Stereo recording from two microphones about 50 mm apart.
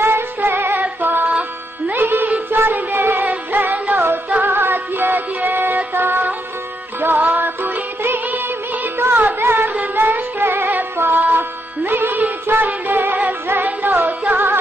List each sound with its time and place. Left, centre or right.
0.0 s music: right
3.7 s music: right
9.4 s carnatic music: right
9.9 s music: right
10.4 s music: right